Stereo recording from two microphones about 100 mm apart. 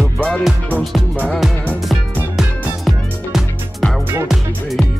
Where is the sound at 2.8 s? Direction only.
Centre (ahead or behind).